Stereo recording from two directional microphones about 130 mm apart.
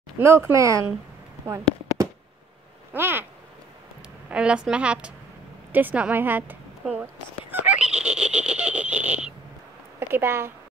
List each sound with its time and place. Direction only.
0.2 s speech: 20° right (ahead or behind)
2.9 s speech: 15° right (ahead or behind)
4.3 s a woman's voice: 10° right (ahead or behind)
7.6 s giggle: 10° right (ahead or behind)
9.9 s a woman's voice: 15° right (ahead or behind)